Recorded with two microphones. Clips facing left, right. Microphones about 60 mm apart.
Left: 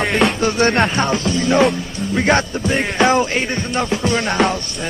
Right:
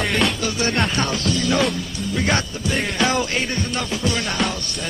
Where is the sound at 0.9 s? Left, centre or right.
Left.